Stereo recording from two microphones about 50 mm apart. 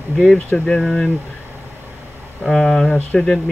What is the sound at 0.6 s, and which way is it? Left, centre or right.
Speech, centre.